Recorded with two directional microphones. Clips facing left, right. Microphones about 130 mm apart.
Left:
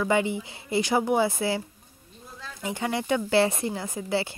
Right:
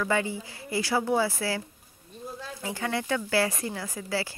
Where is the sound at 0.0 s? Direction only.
20° left (ahead or behind).